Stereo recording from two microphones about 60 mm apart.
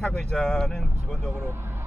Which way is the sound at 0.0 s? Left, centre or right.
Centre.